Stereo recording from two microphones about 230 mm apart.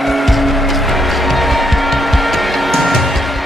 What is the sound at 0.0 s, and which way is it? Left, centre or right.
Music, centre.